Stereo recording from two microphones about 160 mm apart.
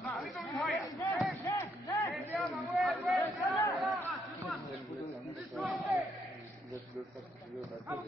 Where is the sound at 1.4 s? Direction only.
20° left (ahead or behind).